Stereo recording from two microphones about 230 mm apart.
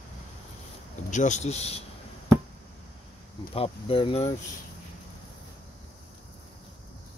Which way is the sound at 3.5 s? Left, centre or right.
Left.